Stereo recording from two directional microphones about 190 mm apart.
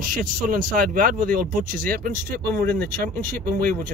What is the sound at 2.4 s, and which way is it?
Speech, 10° left (ahead or behind).